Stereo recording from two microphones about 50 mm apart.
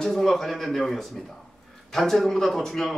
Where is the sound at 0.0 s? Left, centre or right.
Centre.